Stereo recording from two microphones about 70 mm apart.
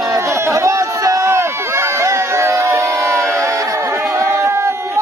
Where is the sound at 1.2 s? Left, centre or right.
Right.